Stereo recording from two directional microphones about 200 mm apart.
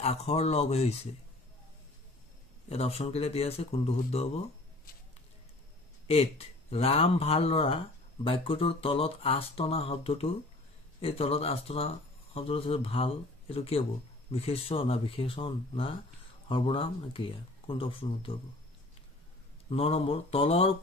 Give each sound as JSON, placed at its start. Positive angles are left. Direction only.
{"t": 0.0, "sound": "speech", "side_deg": 30}
{"t": 2.7, "sound": "speech", "side_deg": 30}
{"t": 6.0, "sound": "speech", "side_deg": 30}
{"t": 19.7, "sound": "speech", "side_deg": 30}